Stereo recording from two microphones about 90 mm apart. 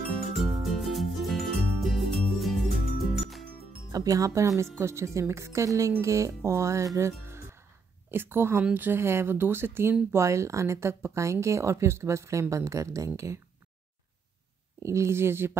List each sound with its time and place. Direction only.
0.2 s music: centre (ahead or behind)
3.9 s speech: 40° right (ahead or behind)
7.0 s music: 30° right (ahead or behind)
8.1 s speech: 25° right (ahead or behind)
14.8 s speech: 30° right (ahead or behind)